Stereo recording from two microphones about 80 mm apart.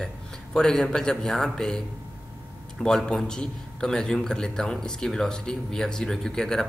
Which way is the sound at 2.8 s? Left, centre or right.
Centre.